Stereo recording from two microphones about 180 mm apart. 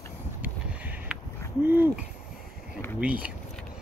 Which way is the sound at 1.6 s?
10° right (ahead or behind).